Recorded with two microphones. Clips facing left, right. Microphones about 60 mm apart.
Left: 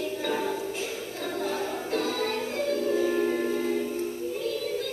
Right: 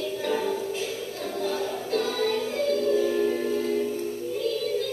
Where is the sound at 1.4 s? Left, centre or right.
Left.